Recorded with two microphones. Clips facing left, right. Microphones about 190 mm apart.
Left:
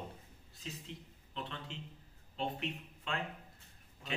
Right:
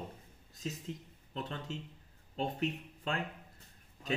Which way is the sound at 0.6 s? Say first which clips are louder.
Right 6 dB; 45° right (ahead or behind).